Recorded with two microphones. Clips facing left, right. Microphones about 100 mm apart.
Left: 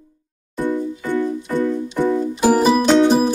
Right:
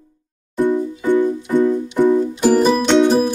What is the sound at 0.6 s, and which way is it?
Music, 15° right (ahead or behind).